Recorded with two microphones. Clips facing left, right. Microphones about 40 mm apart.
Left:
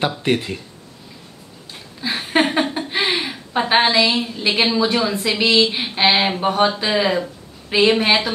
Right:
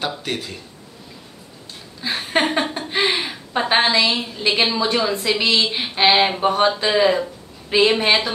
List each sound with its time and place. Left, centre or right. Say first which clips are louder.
0.0 s speech: left 6 dB; centre
2.0 s a woman's voice: left 2 dB; centre